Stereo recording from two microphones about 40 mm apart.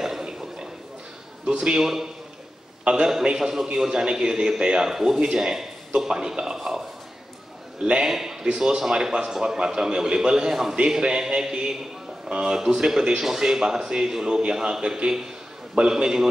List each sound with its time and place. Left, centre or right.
0.0 s a sound: centre
1.4 s a man's voice: right
1.8 s a man's voice: centre
2.9 s a man's voice: right
3.3 s a man's voice: centre
7.8 s a man's voice: right
8.1 s a man's voice: centre